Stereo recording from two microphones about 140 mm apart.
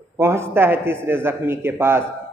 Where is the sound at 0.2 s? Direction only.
20° right (ahead or behind).